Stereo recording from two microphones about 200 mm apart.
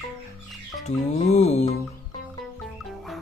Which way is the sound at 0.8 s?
35° left (ahead or behind).